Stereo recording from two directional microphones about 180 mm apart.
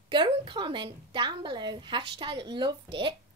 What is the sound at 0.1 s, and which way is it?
A woman's voice, 25° right (ahead or behind).